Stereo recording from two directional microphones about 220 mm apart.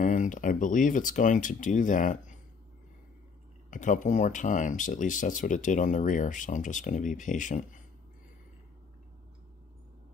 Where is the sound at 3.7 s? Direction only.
35° left (ahead or behind).